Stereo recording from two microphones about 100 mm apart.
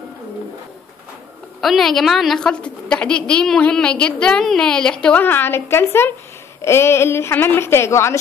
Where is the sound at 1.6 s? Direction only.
Centre (ahead or behind); by 8.2 s 30° left (ahead or behind).